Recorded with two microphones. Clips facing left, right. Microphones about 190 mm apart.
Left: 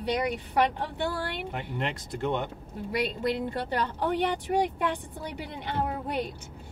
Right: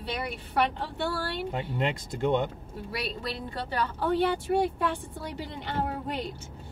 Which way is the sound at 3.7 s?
15° left (ahead or behind).